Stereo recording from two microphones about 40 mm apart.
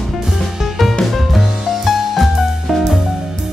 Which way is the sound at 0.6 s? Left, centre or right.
Centre.